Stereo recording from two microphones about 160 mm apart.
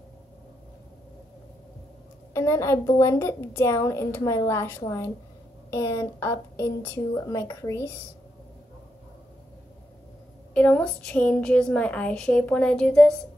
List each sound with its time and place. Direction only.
2.3 s a woman's voice: 15° left (ahead or behind)
10.5 s a woman's voice: 10° left (ahead or behind)